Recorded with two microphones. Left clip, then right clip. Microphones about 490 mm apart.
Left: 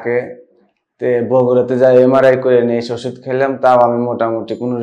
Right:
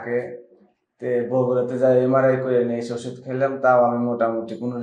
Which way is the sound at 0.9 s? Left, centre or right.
Left.